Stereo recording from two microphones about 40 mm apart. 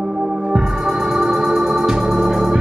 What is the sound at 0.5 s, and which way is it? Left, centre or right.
Organ, centre.